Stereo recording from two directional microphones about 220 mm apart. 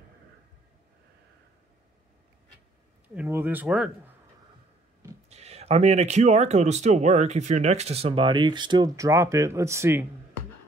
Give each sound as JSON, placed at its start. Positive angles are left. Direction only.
{"t": 3.2, "sound": "speech", "side_deg": -10}
{"t": 5.3, "sound": "speech", "side_deg": -30}